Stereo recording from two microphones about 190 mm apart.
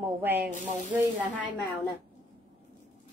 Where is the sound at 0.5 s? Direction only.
40° right (ahead or behind).